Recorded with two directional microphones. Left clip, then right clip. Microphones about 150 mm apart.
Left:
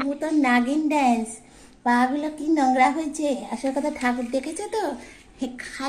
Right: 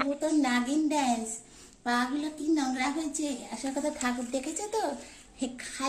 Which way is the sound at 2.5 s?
40° left (ahead or behind).